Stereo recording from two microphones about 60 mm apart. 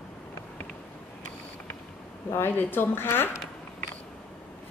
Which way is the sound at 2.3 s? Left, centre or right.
Left.